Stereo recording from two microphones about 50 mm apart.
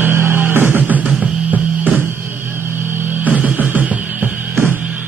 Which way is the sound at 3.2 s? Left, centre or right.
Right.